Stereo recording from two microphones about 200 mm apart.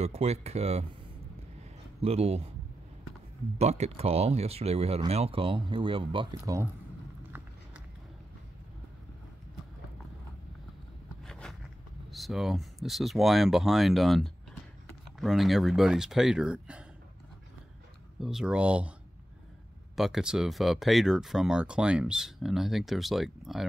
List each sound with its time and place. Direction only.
0.0 s speech: 30° right (ahead or behind)
2.0 s speech: 30° right (ahead or behind)
3.5 s speech: 35° right (ahead or behind); by 6.7 s 15° right (ahead or behind)
11.2 s a sound: 5° left (ahead or behind)
12.1 s speech: centre (ahead or behind)
18.2 s speech: 5° right (ahead or behind)
20.0 s speech: centre (ahead or behind)